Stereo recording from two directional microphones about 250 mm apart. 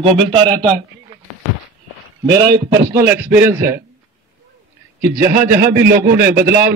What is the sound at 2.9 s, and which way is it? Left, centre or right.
Speech, centre.